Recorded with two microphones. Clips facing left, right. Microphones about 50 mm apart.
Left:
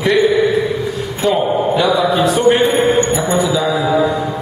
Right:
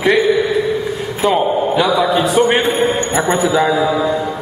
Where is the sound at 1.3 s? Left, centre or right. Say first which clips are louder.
Even; centre.